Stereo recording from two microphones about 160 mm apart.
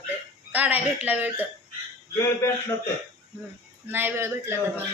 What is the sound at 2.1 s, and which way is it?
Speech, 15° left (ahead or behind).